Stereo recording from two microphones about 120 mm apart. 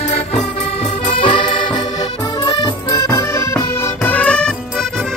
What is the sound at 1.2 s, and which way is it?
Accordion, 45° left (ahead or behind).